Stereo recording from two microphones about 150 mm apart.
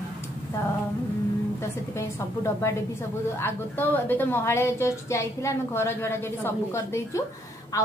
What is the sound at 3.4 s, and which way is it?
A woman's voice, 15° left (ahead or behind).